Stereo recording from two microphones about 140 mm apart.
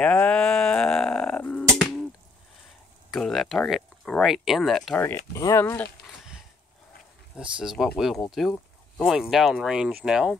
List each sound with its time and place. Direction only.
0.0 s sheep: 10° left (ahead or behind)
3.1 s speech: centre (ahead or behind)
4.9 s speech: 15° left (ahead or behind)
7.3 s speech: 5° right (ahead or behind)